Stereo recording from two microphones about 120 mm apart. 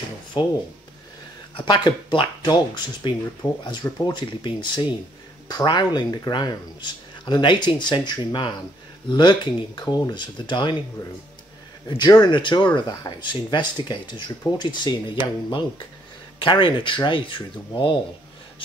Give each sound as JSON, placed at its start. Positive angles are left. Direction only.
{"t": 0.3, "sound": "speech", "side_deg": 40}
{"t": 1.6, "sound": "speech", "side_deg": 40}
{"t": 12.0, "sound": "speech", "side_deg": 35}